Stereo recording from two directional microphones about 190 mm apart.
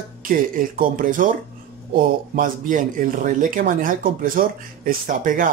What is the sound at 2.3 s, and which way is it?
Speech, 45° right (ahead or behind).